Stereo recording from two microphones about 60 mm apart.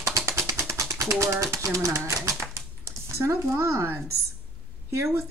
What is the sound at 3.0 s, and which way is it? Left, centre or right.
Speech, right.